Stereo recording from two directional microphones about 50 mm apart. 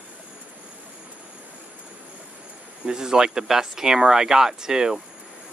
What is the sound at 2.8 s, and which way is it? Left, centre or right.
Speech, centre.